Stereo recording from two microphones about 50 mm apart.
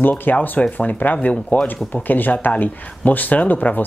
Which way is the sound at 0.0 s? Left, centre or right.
Left.